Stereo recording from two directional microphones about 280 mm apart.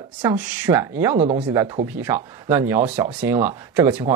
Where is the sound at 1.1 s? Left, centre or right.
Centre.